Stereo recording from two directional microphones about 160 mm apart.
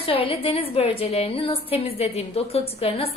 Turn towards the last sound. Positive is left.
turn(degrees=40)  # may be behind; listen again after turning